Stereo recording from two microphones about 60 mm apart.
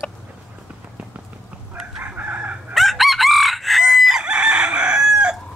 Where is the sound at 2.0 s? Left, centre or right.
Right.